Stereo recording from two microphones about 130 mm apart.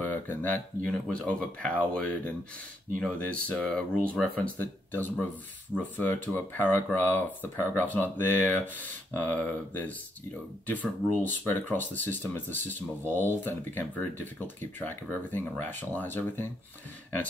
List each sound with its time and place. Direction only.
0.1 s speech: 15° left (ahead or behind)
12.6 s speech: 65° right (ahead or behind)
13.1 s speech: 15° left (ahead or behind)